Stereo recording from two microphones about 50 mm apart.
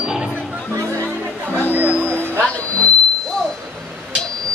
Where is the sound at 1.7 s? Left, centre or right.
Right.